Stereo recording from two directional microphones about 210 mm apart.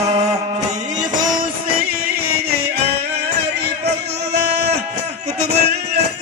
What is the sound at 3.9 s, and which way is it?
Music, 50° right (ahead or behind).